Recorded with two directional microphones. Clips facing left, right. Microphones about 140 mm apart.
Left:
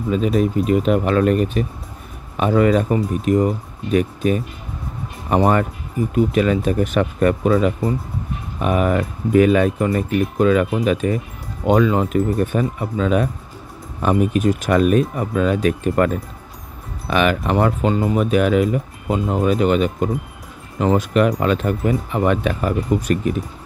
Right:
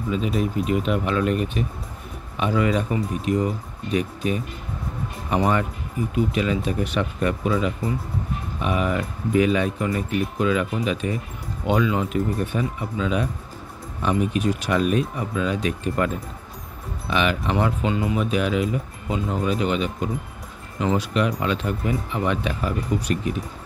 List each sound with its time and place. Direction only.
0.1 s speech: 45° left (ahead or behind)
17.1 s speech: 50° left (ahead or behind)